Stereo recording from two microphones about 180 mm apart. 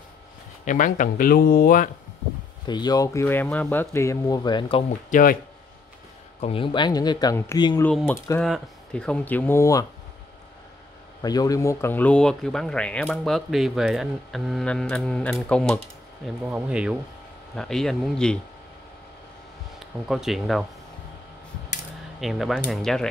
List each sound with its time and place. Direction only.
0.7 s speech: 45° left (ahead or behind)
2.6 s speech: 25° left (ahead or behind)
5.1 s speech: 50° left (ahead or behind)
6.4 s speech: 30° left (ahead or behind)
8.4 s speech: 5° left (ahead or behind)
11.2 s speech: 20° left (ahead or behind)
16.4 s speech: 5° right (ahead or behind)
19.8 s speech: centre (ahead or behind)
22.2 s speech: centre (ahead or behind)